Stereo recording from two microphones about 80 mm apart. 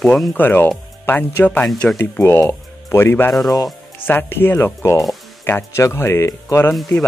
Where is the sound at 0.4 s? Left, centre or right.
Left.